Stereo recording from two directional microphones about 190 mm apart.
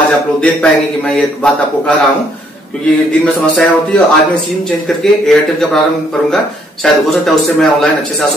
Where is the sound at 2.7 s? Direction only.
5° left (ahead or behind).